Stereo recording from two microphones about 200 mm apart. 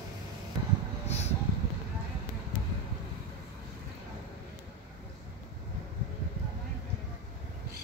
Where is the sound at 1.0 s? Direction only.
30° left (ahead or behind).